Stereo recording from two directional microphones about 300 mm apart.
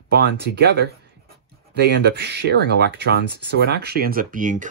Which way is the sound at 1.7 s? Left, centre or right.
Right.